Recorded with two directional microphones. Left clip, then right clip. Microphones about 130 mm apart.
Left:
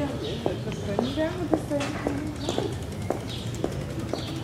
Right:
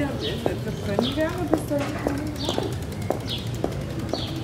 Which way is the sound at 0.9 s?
30° right (ahead or behind).